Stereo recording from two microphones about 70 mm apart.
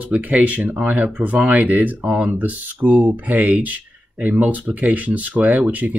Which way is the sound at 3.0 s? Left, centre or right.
Right.